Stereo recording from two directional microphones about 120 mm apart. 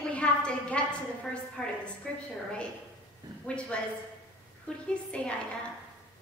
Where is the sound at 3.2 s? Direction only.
35° right (ahead or behind).